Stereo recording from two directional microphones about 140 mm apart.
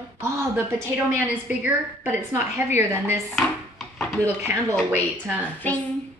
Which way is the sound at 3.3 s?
Centre (ahead or behind).